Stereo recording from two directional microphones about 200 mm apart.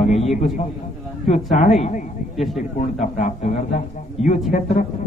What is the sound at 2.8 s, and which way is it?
A man's voice, 35° left (ahead or behind).